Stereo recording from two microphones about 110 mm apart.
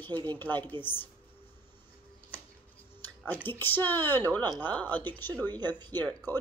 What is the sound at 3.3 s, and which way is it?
Speech, 20° left (ahead or behind).